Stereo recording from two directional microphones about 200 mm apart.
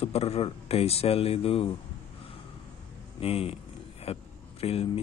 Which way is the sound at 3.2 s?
30° left (ahead or behind).